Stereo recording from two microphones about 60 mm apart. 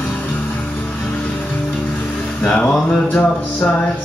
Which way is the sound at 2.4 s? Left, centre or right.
Left.